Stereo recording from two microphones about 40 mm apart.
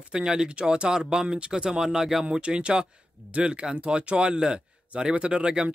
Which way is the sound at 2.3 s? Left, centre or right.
Right.